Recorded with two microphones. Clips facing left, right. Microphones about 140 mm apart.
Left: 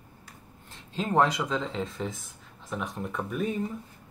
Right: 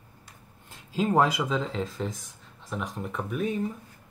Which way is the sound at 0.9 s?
5° right (ahead or behind).